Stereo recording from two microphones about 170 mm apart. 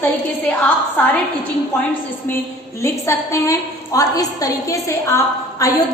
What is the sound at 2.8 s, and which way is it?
A woman's voice, 15° left (ahead or behind).